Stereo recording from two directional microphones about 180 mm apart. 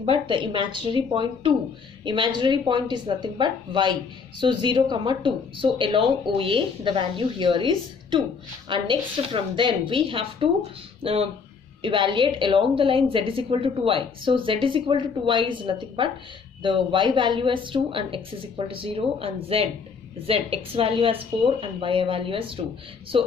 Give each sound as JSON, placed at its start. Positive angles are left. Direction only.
{"t": 0.0, "sound": "a woman's voice", "side_deg": -30}